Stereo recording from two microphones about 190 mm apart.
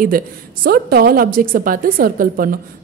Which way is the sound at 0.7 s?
55° right (ahead or behind).